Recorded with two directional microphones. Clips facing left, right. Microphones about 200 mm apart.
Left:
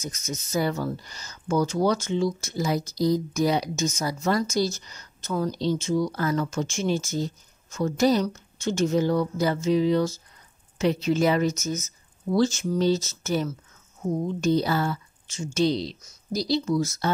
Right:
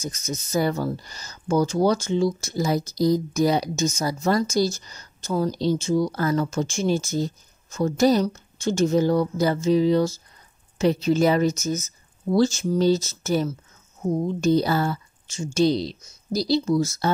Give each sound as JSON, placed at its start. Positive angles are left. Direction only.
{"t": 0.0, "sound": "speech", "side_deg": -35}